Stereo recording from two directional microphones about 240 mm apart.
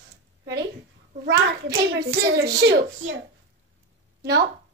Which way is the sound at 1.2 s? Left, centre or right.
Right.